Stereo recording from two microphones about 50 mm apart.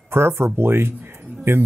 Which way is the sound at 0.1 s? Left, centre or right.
Right.